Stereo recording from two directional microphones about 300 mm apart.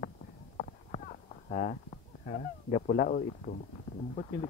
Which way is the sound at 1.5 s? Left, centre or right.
Left.